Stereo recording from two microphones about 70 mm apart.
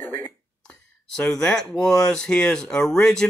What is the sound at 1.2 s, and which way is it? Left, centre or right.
Speech, centre.